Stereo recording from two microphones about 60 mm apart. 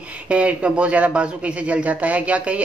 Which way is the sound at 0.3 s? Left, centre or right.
Right.